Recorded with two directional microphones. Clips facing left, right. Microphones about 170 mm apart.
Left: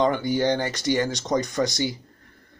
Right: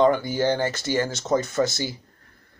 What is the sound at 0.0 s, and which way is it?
Speech, 15° left (ahead or behind).